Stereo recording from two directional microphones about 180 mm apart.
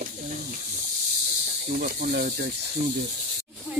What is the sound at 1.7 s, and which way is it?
Speech, 55° right (ahead or behind).